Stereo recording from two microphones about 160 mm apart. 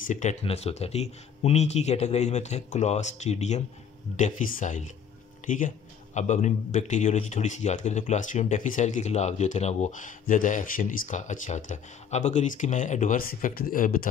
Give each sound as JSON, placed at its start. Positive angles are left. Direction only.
{"t": 0.0, "sound": "speech", "side_deg": 50}